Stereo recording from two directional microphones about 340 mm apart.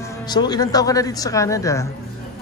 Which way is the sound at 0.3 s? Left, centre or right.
Centre.